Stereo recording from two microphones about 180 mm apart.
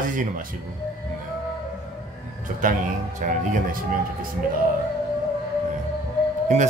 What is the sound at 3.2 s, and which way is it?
Speech, 45° right (ahead or behind).